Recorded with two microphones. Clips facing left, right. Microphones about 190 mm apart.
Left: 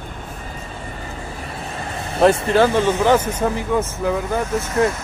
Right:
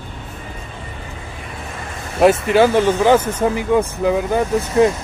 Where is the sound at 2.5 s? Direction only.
10° right (ahead or behind).